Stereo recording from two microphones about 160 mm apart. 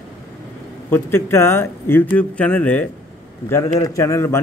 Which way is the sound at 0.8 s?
15° left (ahead or behind).